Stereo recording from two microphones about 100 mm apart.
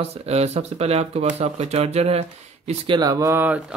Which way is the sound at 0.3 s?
90° right.